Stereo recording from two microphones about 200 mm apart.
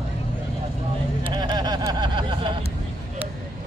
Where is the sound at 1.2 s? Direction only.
20° right (ahead or behind).